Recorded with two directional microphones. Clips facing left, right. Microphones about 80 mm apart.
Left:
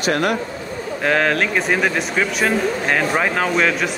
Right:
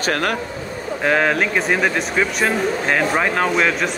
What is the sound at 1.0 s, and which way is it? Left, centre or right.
Speech, centre.